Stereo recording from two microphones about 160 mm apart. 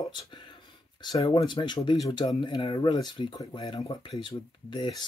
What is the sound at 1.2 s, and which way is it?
Speech, 30° left (ahead or behind).